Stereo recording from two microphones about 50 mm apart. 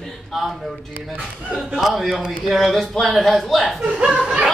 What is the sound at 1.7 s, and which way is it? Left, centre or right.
A man's voice, centre.